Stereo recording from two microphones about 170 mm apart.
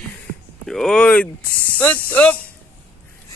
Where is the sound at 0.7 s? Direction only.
5° left (ahead or behind).